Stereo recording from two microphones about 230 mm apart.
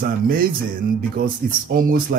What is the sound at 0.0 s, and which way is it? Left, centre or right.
Speech, right.